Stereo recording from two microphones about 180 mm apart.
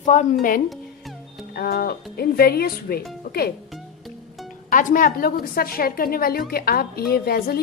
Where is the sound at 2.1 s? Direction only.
60° left (ahead or behind).